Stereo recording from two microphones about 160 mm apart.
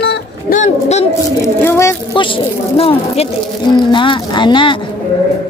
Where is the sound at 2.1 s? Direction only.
35° left (ahead or behind).